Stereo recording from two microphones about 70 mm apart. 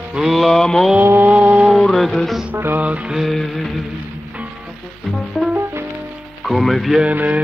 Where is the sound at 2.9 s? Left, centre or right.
Centre.